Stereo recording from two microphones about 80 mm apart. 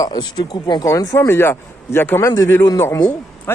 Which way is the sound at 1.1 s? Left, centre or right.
Left.